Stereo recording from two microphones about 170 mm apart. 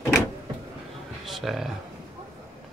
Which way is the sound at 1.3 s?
Centre (ahead or behind).